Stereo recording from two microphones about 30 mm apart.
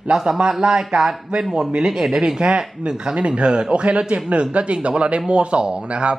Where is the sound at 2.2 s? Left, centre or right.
Right.